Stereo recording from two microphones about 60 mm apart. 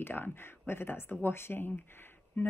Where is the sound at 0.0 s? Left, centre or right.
Left.